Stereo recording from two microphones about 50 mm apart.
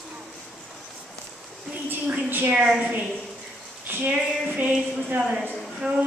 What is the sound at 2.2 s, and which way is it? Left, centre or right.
Speech, right.